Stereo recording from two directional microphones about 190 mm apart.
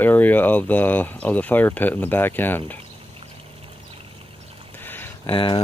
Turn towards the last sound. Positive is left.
turn(degrees=30)  # may be behind; listen again after turning